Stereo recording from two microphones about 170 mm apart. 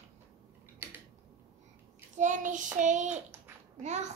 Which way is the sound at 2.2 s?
45° right (ahead or behind).